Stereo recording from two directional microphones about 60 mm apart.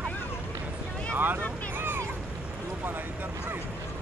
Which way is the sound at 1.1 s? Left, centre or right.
Right.